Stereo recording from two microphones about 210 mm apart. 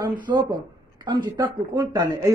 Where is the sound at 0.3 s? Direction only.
15° right (ahead or behind).